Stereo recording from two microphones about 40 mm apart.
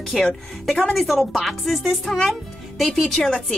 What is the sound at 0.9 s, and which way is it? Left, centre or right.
A woman's voice, centre.